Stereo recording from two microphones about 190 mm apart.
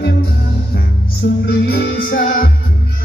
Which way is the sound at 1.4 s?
55° left (ahead or behind).